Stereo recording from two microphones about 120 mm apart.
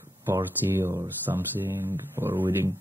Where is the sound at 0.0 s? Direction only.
20° right (ahead or behind).